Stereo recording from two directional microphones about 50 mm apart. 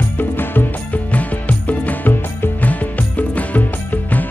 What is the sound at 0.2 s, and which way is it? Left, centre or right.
Music, left.